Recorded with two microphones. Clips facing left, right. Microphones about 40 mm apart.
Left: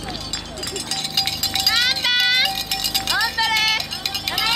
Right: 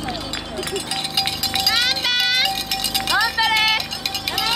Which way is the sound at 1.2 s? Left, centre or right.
Centre.